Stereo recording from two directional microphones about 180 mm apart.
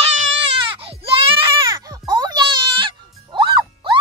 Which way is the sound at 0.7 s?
30° right (ahead or behind).